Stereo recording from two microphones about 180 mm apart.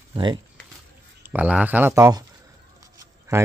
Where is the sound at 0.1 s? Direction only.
25° right (ahead or behind).